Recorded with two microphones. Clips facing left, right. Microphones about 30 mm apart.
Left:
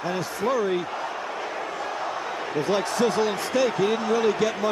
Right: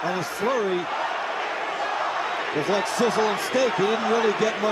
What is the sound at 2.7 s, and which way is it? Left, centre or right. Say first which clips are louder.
Speech: even; centre.